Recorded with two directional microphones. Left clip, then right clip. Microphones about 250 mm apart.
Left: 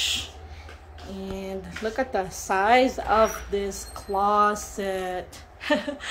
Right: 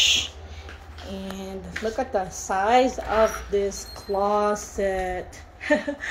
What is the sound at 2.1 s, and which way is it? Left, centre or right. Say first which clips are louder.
Speech: even; centre.